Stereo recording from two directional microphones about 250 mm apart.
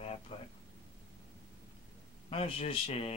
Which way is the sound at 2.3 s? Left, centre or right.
Left.